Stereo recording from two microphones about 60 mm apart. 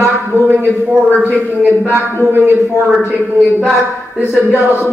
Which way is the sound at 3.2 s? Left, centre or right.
Centre.